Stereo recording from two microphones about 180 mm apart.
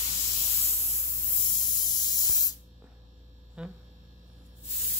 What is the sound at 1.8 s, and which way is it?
Spray, 20° left (ahead or behind).